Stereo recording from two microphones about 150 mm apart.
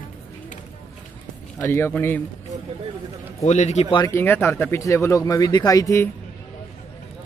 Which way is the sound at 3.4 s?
50° left (ahead or behind).